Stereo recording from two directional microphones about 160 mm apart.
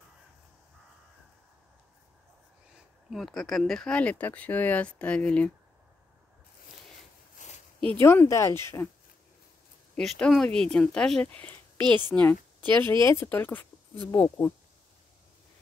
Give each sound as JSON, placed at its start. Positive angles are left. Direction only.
{"t": 3.1, "sound": "speech", "side_deg": 0}
{"t": 7.4, "sound": "a sound", "side_deg": 50}
{"t": 7.9, "sound": "speech", "side_deg": 15}
{"t": 9.9, "sound": "speech", "side_deg": 5}
{"t": 12.5, "sound": "speech", "side_deg": -30}
{"t": 13.0, "sound": "speech", "side_deg": 15}